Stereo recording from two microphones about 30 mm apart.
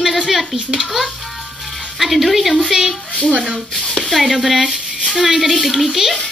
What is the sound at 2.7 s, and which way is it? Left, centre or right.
Speech, centre.